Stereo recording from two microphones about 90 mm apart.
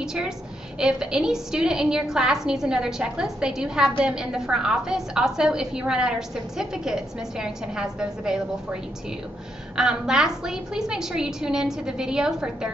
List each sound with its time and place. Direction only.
0.0 s a woman's voice: 5° right (ahead or behind)
9.8 s a woman's voice: 5° right (ahead or behind)